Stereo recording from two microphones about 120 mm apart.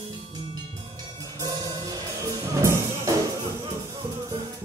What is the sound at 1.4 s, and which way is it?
Music, 30° right (ahead or behind).